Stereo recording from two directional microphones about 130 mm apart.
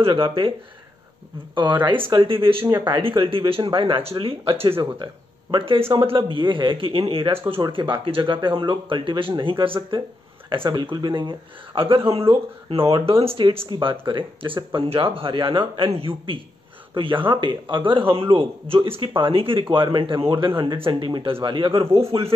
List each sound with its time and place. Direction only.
0.0 s a man's voice: 40° right (ahead or behind)
1.5 s a man's voice: 35° right (ahead or behind)